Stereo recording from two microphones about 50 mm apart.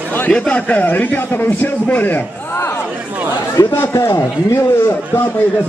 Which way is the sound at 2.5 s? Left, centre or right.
Left.